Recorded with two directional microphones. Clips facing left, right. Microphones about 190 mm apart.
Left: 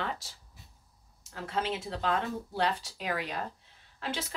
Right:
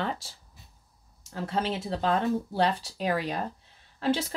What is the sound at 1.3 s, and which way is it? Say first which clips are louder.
Speech: right 3 dB; 35° right (ahead or behind).